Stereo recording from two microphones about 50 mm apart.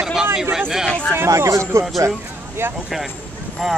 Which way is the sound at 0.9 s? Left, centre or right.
Left.